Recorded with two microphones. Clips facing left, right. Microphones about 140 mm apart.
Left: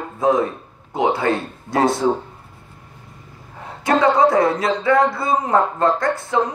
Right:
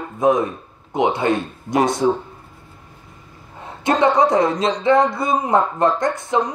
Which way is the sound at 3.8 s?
20° right (ahead or behind).